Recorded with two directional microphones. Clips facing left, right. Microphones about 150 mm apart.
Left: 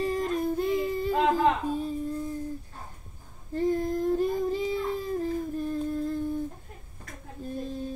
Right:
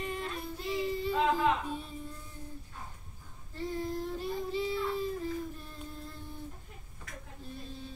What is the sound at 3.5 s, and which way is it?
Child singing, 50° left (ahead or behind).